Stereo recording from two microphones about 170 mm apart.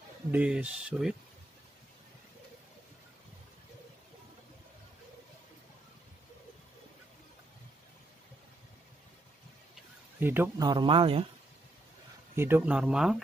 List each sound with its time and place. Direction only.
0.3 s speech: 10° right (ahead or behind)
10.2 s speech: 15° right (ahead or behind)
10.7 s speech: 30° right (ahead or behind)
12.4 s speech: 10° right (ahead or behind)